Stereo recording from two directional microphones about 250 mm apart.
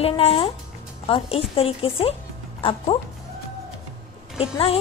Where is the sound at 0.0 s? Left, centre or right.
Left.